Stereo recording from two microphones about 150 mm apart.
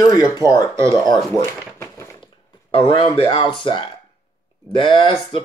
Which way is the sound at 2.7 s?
35° left (ahead or behind).